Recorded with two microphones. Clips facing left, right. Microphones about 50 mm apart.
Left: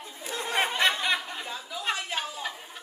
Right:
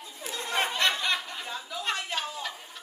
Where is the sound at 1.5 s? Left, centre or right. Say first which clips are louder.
Even; centre.